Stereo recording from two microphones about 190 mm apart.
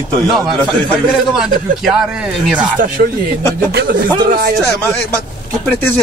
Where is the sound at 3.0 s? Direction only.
50° right (ahead or behind).